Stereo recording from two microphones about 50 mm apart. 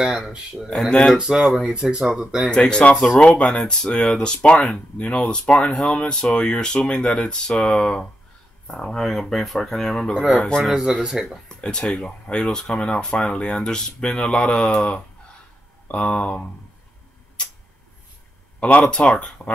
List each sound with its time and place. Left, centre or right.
0.0 s speech: centre
0.8 s speech: centre
1.7 s speech: centre
2.5 s speech: centre
10.9 s speech: centre
11.4 s speech: centre
15.9 s speech: left
18.6 s speech: left